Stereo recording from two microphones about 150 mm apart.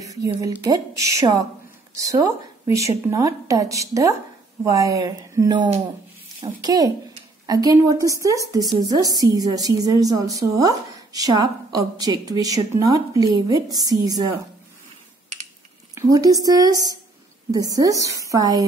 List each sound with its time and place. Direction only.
0.0 s a woman's voice: 25° right (ahead or behind)
15.9 s a woman's voice: 20° right (ahead or behind)